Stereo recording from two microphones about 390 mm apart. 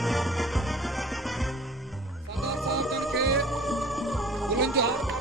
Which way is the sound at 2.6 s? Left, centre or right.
Centre.